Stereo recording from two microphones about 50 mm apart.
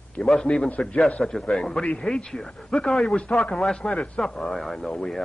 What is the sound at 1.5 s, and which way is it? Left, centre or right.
Speech, centre.